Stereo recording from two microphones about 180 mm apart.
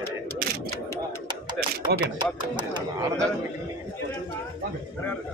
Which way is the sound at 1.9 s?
65° right (ahead or behind).